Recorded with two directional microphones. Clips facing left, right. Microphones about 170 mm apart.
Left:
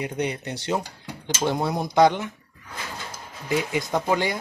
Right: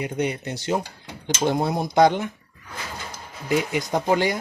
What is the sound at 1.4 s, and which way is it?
Speech, 20° right (ahead or behind).